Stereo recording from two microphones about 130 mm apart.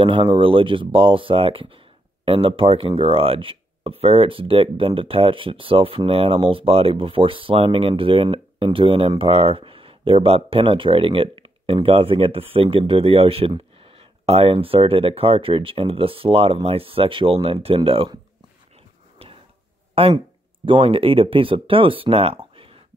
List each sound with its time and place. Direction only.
0.0 s speech: 40° right (ahead or behind)
19.9 s speech: 50° right (ahead or behind)